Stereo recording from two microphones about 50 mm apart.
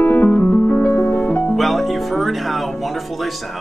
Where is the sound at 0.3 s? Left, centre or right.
Left.